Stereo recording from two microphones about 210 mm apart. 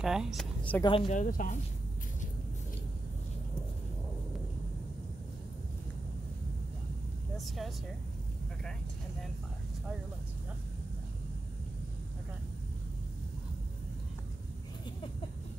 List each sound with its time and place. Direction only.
0.0 s speech: centre (ahead or behind)
0.8 s speech: 25° left (ahead or behind)
1.2 s speech: 40° left (ahead or behind)
7.3 s a sound: centre (ahead or behind)